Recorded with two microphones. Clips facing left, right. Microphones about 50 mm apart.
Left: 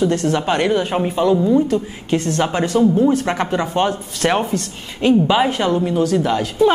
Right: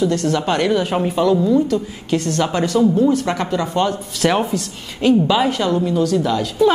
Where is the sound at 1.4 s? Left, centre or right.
Left.